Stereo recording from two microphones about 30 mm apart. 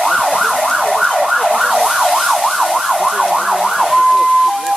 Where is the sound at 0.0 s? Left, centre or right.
Centre.